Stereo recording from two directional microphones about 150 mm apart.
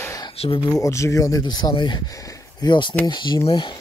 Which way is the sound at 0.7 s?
20° left (ahead or behind).